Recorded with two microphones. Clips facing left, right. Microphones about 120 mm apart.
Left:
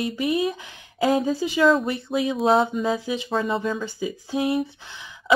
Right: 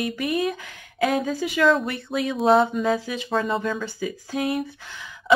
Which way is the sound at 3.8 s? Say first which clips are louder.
Left 1 dB; 20° left (ahead or behind).